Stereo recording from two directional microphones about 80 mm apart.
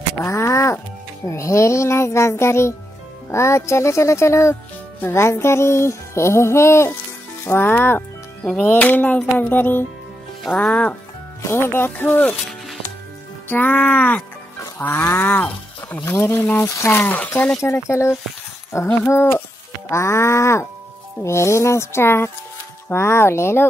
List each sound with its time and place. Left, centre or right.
0.2 s music: left
1.2 s speech: left
7.4 s music: left
10.4 s speech: centre
10.7 s speech: centre
11.4 s music: left
12.3 s music: centre
13.5 s music: left
14.8 s music: left
15.1 s speech: left
16.1 s speech: left
16.6 s music: left
17.6 s speech: left